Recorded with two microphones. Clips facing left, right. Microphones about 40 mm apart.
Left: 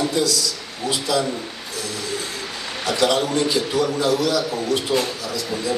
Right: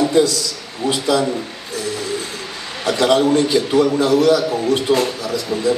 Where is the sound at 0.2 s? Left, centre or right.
Right.